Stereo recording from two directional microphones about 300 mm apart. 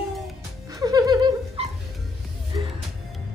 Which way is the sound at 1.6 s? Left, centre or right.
Centre.